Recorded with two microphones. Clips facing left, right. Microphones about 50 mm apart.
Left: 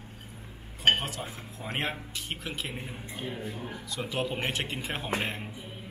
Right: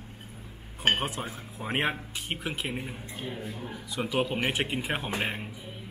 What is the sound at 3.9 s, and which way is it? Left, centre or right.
Speech, centre.